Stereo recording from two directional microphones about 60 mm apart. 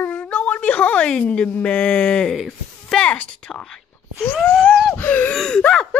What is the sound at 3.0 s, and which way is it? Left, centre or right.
Gasp, centre.